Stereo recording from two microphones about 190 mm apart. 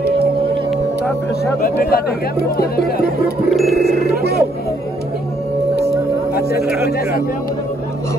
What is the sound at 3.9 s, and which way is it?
Music, 55° right (ahead or behind).